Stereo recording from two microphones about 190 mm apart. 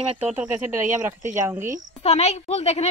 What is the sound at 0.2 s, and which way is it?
Speech, 5° right (ahead or behind).